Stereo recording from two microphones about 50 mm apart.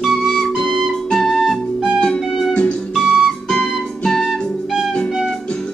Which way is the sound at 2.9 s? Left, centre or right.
Centre.